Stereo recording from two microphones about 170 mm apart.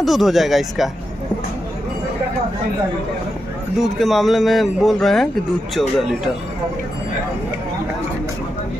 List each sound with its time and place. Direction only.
0.0 s speech: centre (ahead or behind)
3.8 s speech: centre (ahead or behind)